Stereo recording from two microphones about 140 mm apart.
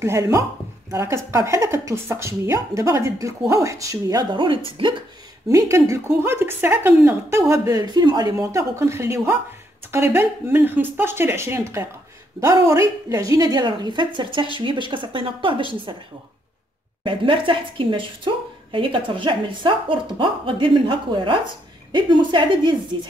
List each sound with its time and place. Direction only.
0.0 s a woman's voice: 20° right (ahead or behind); by 4.9 s 40° right (ahead or behind)
5.5 s a woman's voice: 20° right (ahead or behind)
17.0 s a woman's voice: 40° right (ahead or behind)